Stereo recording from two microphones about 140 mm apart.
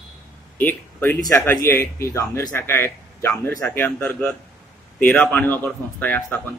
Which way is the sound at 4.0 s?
5° left (ahead or behind).